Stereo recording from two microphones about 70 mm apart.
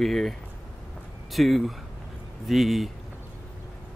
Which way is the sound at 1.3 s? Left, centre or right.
Centre.